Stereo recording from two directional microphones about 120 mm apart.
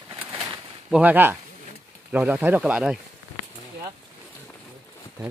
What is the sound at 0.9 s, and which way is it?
Speech, 15° right (ahead or behind).